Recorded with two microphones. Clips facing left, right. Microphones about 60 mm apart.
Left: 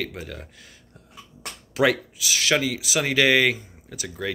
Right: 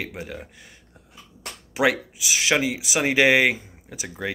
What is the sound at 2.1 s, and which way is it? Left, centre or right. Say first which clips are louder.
Speech: right 1 dB; right.